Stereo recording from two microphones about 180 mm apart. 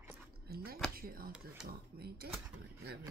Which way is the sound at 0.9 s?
55° right (ahead or behind).